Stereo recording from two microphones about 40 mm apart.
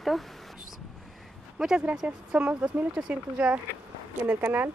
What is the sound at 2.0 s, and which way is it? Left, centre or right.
Speech, right.